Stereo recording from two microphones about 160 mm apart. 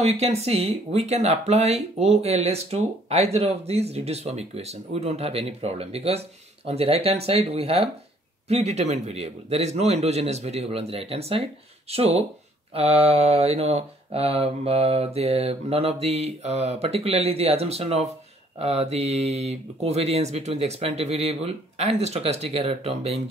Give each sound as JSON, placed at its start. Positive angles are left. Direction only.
{"t": 0.0, "sound": "speech", "side_deg": -40}